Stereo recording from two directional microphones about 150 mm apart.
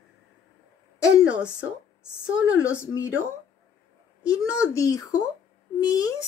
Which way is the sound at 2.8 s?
20° left (ahead or behind).